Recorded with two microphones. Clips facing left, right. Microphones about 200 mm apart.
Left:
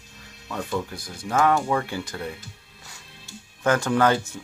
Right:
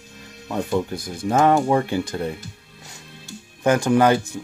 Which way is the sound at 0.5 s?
25° right (ahead or behind).